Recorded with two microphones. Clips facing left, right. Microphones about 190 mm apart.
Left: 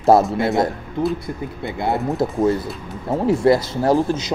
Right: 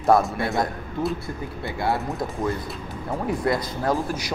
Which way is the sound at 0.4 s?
20° left (ahead or behind).